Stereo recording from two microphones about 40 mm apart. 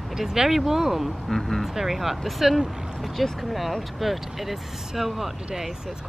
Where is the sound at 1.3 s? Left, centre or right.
Centre.